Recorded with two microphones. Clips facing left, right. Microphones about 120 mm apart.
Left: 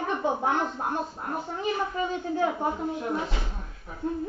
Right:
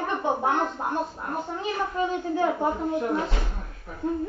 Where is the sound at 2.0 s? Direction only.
55° right (ahead or behind).